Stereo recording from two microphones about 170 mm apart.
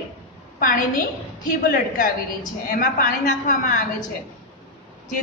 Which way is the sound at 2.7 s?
55° left (ahead or behind).